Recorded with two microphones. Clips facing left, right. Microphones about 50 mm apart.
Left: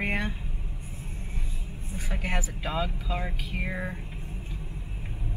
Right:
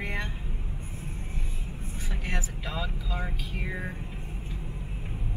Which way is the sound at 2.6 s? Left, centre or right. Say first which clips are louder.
Left 4 dB; left.